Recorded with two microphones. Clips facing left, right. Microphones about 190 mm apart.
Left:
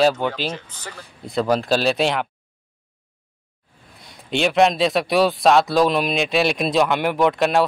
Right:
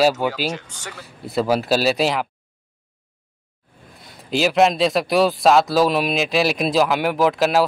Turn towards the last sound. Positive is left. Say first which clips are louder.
# even
turn(degrees=0)  # may be behind; listen again after turning